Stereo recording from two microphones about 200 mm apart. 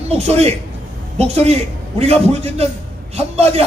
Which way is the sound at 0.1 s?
30° right (ahead or behind).